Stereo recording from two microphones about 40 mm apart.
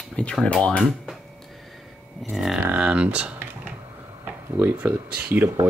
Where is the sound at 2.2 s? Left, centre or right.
Centre.